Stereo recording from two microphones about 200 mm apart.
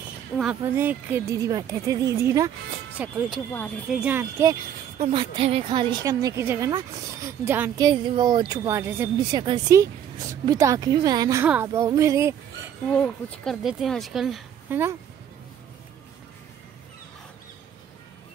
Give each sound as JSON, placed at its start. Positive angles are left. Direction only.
{"t": 0.6, "sound": "speech", "side_deg": -10}
{"t": 4.9, "sound": "a woman's voice", "side_deg": -25}
{"t": 12.9, "sound": "speech", "side_deg": 5}